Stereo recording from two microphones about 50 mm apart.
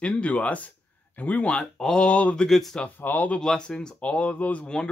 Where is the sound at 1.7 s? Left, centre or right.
Centre.